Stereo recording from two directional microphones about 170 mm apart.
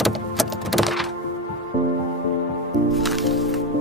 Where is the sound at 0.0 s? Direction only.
Centre (ahead or behind).